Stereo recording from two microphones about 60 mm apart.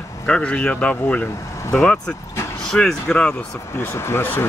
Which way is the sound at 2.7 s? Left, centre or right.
Centre.